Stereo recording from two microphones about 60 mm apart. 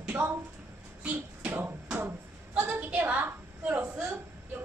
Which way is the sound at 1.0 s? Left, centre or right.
Right.